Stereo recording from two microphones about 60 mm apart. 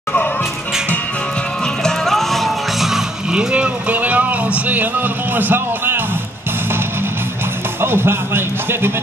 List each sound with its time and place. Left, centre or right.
1.8 s music: centre
3.3 s a sound: centre; by 6.0 s right
7.8 s speech: right